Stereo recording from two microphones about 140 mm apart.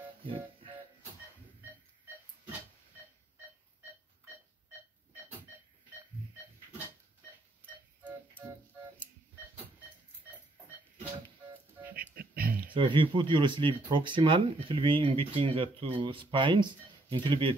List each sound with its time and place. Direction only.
0.2 s music: 40° right (ahead or behind)
12.2 s a sound: 90° right
12.7 s speech: 35° right (ahead or behind)